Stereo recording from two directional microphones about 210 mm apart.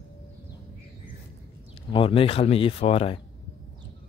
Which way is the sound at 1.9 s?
25° left (ahead or behind).